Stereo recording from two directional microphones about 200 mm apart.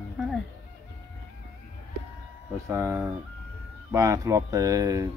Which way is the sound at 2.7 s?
10° right (ahead or behind).